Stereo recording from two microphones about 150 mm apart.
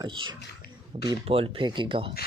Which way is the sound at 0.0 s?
30° right (ahead or behind).